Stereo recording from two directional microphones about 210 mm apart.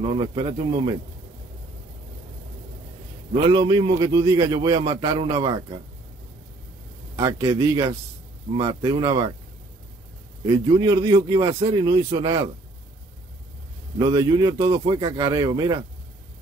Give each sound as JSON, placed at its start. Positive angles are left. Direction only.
{"t": 0.0, "sound": "a man's voice", "side_deg": -25}
{"t": 3.4, "sound": "a man's voice", "side_deg": -20}
{"t": 7.2, "sound": "a man's voice", "side_deg": -15}
{"t": 10.4, "sound": "a man's voice", "side_deg": -20}
{"t": 13.9, "sound": "speech", "side_deg": -20}